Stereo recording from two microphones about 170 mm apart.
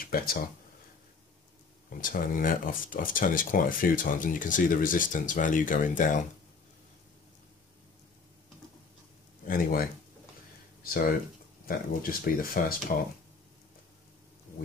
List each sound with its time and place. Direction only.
0.0 s speech: 60° left (ahead or behind)
1.9 s speech: 55° left (ahead or behind)
9.5 s speech: 60° left (ahead or behind)
11.6 s speech: 60° left (ahead or behind)